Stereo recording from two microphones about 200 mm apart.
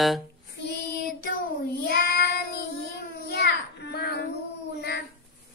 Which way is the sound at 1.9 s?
55° left (ahead or behind).